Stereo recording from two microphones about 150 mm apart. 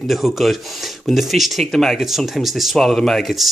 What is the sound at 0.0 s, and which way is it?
Speech, centre (ahead or behind).